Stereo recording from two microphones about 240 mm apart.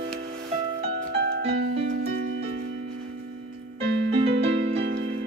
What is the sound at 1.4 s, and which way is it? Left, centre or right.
Music, right.